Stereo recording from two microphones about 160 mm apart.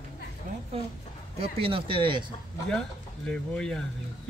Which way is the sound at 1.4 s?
35° right (ahead or behind).